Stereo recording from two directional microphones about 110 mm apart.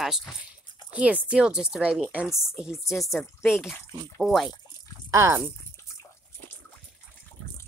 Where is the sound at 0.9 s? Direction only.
10° right (ahead or behind).